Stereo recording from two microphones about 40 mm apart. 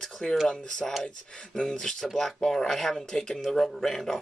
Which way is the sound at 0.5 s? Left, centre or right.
Centre.